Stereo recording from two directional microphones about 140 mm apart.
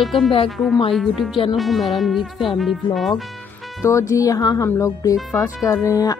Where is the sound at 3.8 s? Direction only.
20° left (ahead or behind).